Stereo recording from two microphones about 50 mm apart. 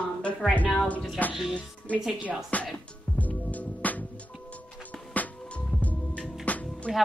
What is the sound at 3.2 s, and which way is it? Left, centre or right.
Music, left.